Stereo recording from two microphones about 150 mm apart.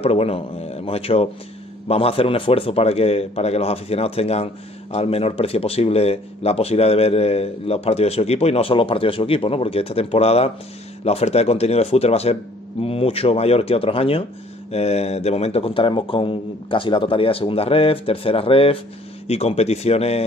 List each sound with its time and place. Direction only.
0.0 s a man's voice: 40° left (ahead or behind)